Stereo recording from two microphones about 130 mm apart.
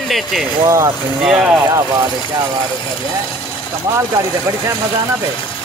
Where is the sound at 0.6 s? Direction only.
25° right (ahead or behind).